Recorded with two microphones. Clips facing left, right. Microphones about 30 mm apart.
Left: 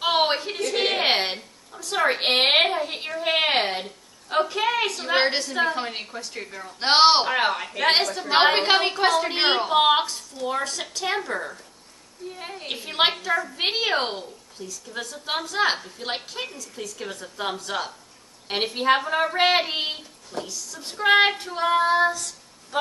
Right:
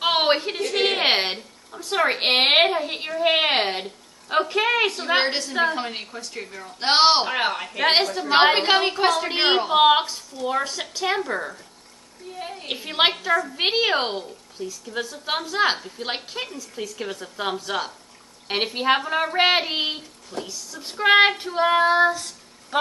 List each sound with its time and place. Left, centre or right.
0.0 s a sound: centre
1.8 s a woman's voice: centre
5.0 s a woman's voice: centre
12.4 s a woman's voice: centre
12.6 s a woman's voice: centre
14.2 s a woman's voice: right; by 20.4 s centre
20.4 s a woman's voice: centre
22.1 s female singing: right